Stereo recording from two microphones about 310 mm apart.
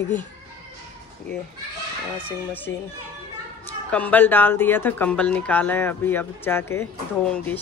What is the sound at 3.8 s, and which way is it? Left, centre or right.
Speech, centre.